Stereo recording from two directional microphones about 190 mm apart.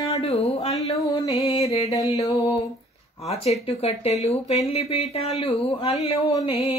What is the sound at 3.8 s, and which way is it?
Speech, 35° left (ahead or behind).